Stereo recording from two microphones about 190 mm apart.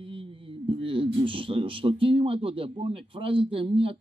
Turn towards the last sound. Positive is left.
turn(degrees=-30)  # may be behind; listen again after turning